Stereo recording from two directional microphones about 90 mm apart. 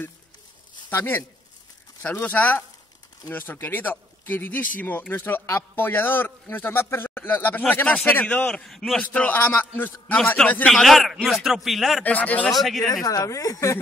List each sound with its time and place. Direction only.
0.8 s a man's voice: 20° left (ahead or behind); by 9.0 s 5° left (ahead or behind)
9.0 s a man's voice: 15° left (ahead or behind)
10.7 s speech: centre (ahead or behind)
12.0 s a man's voice: 20° left (ahead or behind)
12.4 s speech: centre (ahead or behind)
13.0 s a woman's voice: 40° left (ahead or behind)